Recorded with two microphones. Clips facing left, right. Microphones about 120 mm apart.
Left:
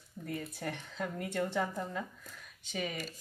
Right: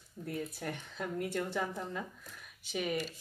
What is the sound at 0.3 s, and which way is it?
Speech, centre (ahead or behind).